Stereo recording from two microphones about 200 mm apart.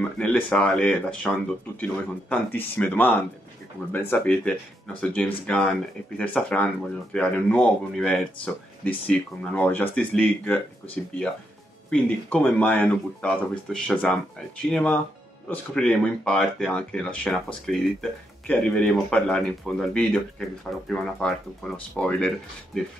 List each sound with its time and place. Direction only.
0.2 s speech: 5° left (ahead or behind)
11.9 s speech: 5° left (ahead or behind)